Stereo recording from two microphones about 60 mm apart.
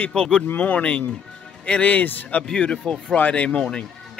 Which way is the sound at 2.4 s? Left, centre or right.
Centre.